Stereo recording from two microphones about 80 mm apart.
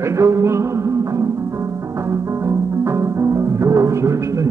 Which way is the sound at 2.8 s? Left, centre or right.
Right.